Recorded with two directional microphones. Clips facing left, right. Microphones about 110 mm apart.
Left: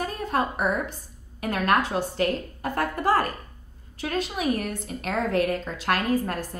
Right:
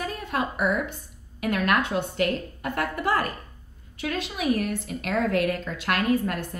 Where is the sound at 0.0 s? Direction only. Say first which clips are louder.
Left 2 dB; 35° left (ahead or behind).